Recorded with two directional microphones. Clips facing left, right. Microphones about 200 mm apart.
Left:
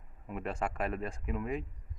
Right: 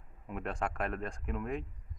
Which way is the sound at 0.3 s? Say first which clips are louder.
Left 1 dB; centre (ahead or behind).